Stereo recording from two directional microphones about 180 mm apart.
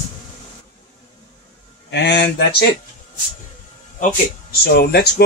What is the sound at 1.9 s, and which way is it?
Speech, 75° left (ahead or behind).